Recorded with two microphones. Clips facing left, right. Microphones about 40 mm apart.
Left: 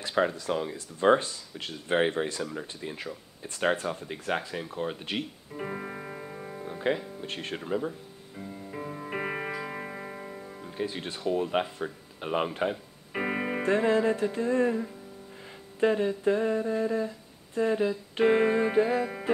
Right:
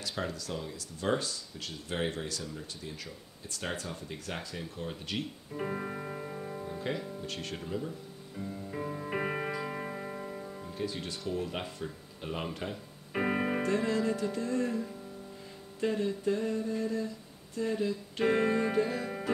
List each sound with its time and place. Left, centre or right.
0.0 s speech: left
5.5 s music: centre
6.6 s music: left
7.2 s speech: left
8.4 s music: centre
10.7 s speech: left
13.1 s music: centre
13.6 s speech: left
17.6 s music: left; by 19.3 s centre